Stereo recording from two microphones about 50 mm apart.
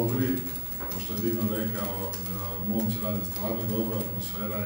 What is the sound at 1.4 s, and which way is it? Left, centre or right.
A man's voice, centre.